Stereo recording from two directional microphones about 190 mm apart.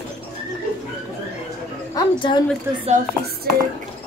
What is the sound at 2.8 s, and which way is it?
Speech, 40° right (ahead or behind).